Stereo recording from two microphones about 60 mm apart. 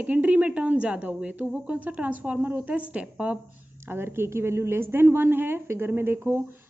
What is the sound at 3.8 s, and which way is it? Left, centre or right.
Speech, right.